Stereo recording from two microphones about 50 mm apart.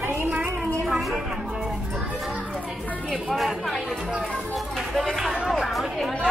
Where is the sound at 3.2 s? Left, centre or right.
Centre.